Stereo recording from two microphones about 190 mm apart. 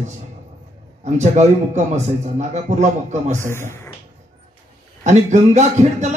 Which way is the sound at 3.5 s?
15° left (ahead or behind).